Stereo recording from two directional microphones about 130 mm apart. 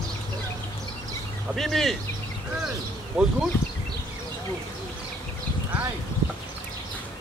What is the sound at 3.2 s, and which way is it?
Speech, 5° right (ahead or behind).